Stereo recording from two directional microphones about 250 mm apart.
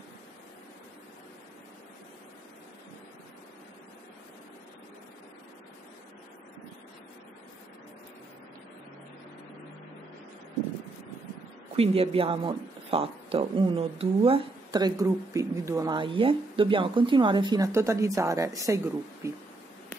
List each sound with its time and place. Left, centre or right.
11.7 s speech: right